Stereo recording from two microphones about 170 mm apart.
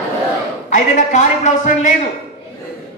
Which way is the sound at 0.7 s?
45° left (ahead or behind).